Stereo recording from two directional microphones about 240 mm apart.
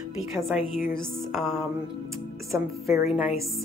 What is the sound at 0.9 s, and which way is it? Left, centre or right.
A woman's voice, centre.